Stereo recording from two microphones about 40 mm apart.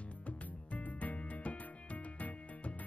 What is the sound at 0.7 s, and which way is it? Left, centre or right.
Music, left.